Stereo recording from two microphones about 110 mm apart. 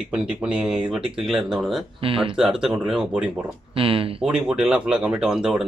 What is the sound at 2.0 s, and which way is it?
Speech, 55° right (ahead or behind).